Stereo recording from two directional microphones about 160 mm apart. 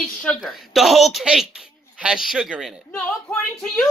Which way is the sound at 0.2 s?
5° left (ahead or behind).